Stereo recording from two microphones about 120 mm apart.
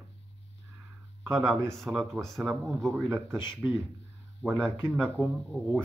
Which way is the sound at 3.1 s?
20° right (ahead or behind).